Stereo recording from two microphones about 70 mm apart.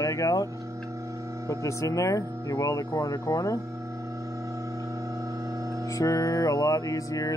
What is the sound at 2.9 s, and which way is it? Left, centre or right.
Music, left.